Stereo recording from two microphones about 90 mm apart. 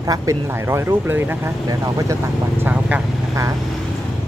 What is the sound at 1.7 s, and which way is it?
Speech, 40° right (ahead or behind).